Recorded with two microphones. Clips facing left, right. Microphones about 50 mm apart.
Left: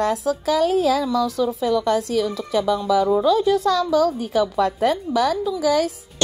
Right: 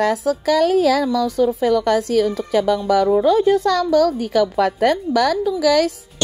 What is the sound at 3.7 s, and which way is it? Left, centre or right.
A woman's voice, right.